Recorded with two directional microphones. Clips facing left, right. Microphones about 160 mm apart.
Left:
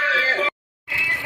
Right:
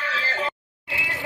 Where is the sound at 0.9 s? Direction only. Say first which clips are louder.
Right 2 dB; 20° right (ahead or behind).